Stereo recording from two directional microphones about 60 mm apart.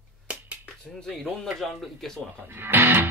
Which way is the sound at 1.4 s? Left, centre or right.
Centre.